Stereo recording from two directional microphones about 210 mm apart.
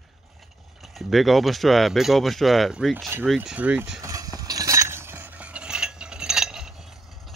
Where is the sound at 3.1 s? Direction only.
5° right (ahead or behind).